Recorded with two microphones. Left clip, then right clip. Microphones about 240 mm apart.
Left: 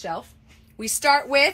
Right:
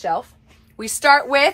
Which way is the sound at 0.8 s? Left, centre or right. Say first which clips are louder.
Right 5 dB; centre.